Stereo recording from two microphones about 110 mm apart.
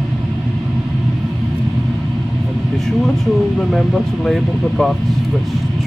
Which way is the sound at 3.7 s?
Centre (ahead or behind).